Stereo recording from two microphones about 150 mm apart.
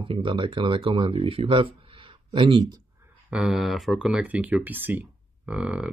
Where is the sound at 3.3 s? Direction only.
5° right (ahead or behind).